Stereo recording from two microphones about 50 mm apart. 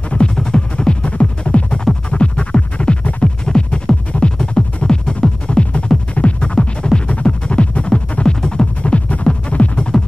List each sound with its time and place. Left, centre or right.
0.1 s music: centre